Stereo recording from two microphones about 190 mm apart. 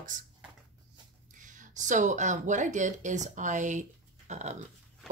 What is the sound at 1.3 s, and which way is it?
Speech, 40° right (ahead or behind).